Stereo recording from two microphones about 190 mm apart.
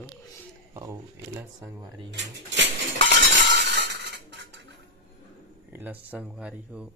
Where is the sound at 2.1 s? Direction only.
70° right (ahead or behind).